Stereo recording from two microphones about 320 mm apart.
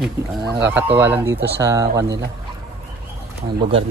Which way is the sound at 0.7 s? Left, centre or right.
Centre.